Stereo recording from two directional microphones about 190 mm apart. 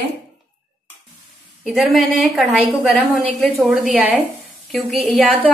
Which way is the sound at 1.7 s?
Centre (ahead or behind).